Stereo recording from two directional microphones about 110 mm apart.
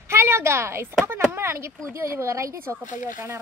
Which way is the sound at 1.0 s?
25° right (ahead or behind).